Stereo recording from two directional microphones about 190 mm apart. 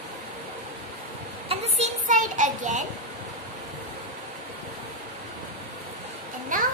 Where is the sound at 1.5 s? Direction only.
40° right (ahead or behind).